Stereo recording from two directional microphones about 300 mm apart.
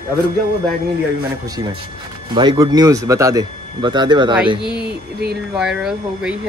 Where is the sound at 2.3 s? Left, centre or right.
Centre.